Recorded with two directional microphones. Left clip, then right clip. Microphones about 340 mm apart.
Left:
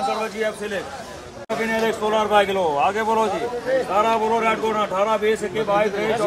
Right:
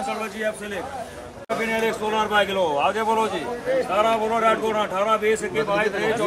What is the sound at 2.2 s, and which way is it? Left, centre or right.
A man's voice, centre.